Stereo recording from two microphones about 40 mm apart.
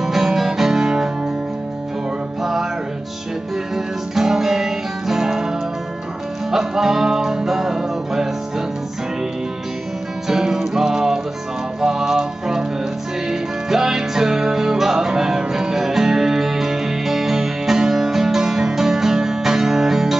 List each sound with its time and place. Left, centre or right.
0.0 s music: centre
3.7 s music: centre
6.5 s music: centre
10.2 s music: centre